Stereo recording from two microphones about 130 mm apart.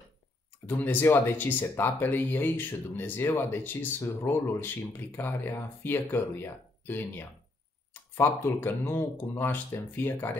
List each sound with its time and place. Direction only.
0.7 s speech: 15° left (ahead or behind)